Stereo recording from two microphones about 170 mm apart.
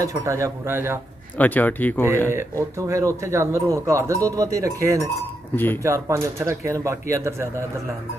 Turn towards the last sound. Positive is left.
turn(degrees=-15)  # may be behind; listen again after turning